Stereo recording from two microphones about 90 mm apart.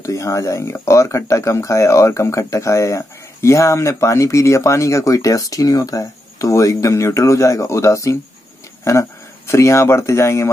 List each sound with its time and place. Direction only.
0.0 s speech: 35° left (ahead or behind)